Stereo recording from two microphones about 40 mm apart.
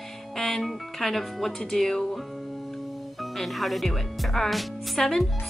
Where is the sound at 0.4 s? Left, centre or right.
Centre.